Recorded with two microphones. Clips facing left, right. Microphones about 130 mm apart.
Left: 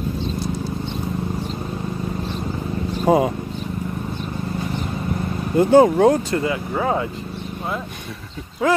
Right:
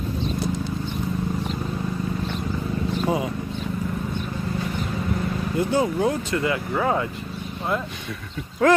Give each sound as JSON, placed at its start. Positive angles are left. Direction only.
{"t": 3.0, "sound": "a sound", "side_deg": 45}
{"t": 5.6, "sound": "speech", "side_deg": 50}
{"t": 6.5, "sound": "speech", "side_deg": 25}
{"t": 8.6, "sound": "speech", "side_deg": 10}